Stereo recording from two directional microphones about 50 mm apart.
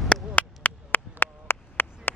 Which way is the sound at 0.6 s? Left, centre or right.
Left.